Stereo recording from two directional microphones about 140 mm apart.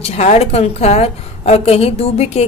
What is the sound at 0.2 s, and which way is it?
A woman's voice, 50° left (ahead or behind).